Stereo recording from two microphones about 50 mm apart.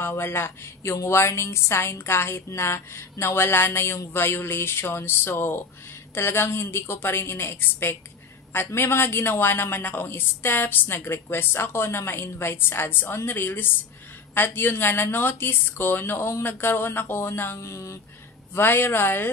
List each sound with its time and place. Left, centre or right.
0.0 s a woman's voice: left
17.6 s speech: left
18.5 s a woman's voice: left